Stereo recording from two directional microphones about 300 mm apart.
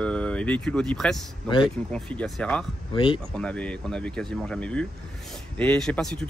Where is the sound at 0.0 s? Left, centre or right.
Centre.